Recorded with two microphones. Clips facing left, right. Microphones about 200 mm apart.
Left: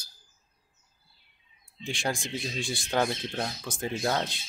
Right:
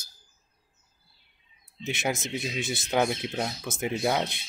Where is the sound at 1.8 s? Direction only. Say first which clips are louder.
Right 2 dB; 20° right (ahead or behind).